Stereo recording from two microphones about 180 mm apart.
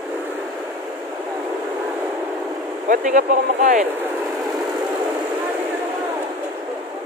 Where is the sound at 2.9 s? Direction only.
45° right (ahead or behind).